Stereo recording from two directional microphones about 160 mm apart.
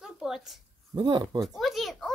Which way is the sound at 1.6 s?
Centre (ahead or behind).